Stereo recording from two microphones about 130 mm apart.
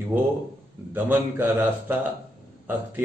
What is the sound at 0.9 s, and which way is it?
Speech, 15° right (ahead or behind).